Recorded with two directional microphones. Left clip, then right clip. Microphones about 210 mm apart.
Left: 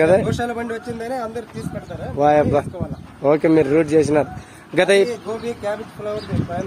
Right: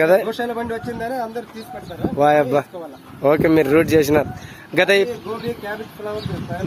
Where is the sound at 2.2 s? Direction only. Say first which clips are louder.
Even; centre (ahead or behind).